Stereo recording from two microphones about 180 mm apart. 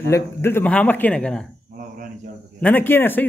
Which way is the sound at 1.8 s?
50° right (ahead or behind).